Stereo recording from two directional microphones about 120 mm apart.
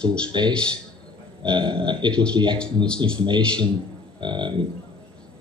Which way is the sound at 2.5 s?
10° left (ahead or behind).